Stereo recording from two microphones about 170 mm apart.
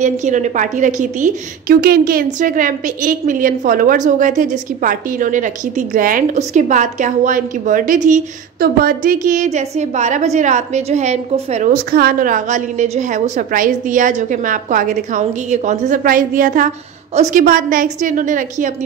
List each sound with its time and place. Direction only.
0.0 s a woman's voice: 45° right (ahead or behind)
11.7 s a woman's voice: 60° right (ahead or behind)